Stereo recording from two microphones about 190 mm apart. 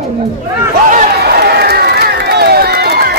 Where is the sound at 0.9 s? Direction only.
50° right (ahead or behind).